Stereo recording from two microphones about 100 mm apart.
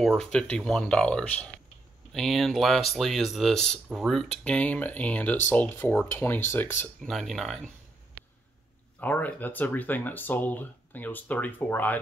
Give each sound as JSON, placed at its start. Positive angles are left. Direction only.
{"t": 0.0, "sound": "speech", "side_deg": 5}
{"t": 7.0, "sound": "speech", "side_deg": 0}
{"t": 9.0, "sound": "speech", "side_deg": 20}